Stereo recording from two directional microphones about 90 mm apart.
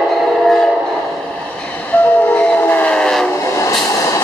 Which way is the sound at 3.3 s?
30° left (ahead or behind).